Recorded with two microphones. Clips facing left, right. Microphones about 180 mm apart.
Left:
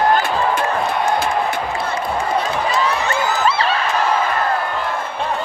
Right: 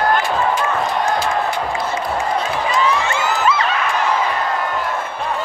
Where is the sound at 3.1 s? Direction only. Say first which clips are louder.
Even; 30° left (ahead or behind).